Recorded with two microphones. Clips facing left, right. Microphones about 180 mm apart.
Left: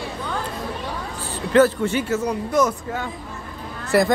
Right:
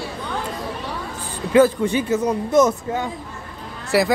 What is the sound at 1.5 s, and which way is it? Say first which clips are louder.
Speech: right 1 dB; 15° right (ahead or behind).